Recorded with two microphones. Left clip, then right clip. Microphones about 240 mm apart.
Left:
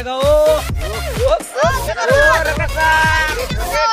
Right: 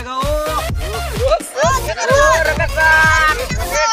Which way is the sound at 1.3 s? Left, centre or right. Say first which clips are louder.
Right 2 dB; left.